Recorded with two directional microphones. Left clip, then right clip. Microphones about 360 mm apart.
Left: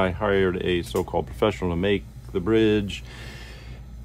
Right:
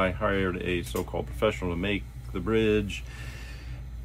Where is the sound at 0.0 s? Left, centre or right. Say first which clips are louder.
Left 5 dB; left.